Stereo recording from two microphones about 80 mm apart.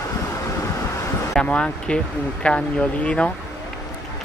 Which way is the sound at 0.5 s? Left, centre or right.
Left.